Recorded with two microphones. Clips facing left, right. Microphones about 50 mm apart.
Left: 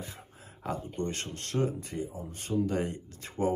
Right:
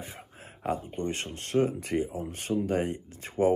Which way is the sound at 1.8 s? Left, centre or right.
Right.